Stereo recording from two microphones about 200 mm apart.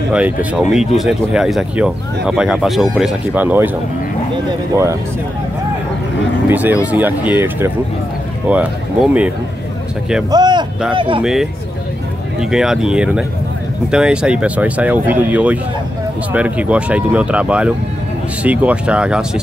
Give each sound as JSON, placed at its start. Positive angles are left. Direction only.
{"t": 0.1, "sound": "speech", "side_deg": -5}
{"t": 6.5, "sound": "speech", "side_deg": -10}
{"t": 10.3, "sound": "speech", "side_deg": -20}
{"t": 12.4, "sound": "speech", "side_deg": -5}